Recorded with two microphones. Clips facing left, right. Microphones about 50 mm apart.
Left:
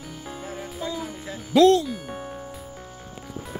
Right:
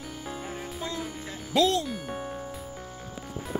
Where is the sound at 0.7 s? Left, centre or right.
Centre.